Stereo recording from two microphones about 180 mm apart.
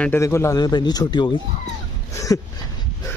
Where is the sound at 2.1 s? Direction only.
20° left (ahead or behind).